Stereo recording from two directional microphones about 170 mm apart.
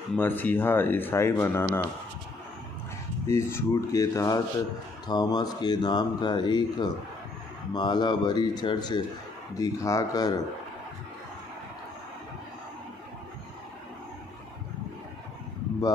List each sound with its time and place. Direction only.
0.1 s speech: 10° left (ahead or behind)
3.3 s speech: 15° left (ahead or behind)